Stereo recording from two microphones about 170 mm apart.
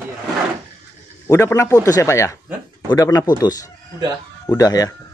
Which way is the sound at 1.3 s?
15° left (ahead or behind).